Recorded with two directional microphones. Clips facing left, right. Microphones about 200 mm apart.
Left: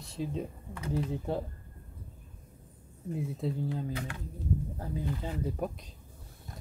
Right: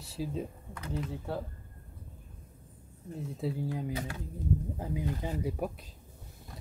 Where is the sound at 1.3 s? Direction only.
20° left (ahead or behind).